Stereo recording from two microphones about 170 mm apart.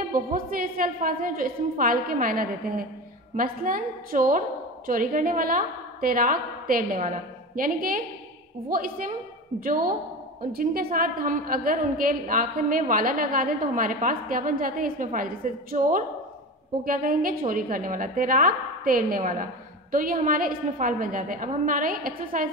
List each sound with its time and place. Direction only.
0.1 s a woman's voice: 55° right (ahead or behind)